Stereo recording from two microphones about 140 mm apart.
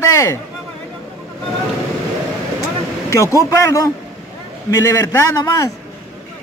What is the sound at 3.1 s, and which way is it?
A man's voice, 20° left (ahead or behind).